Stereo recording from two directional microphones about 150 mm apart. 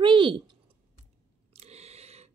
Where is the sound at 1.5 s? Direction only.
45° right (ahead or behind).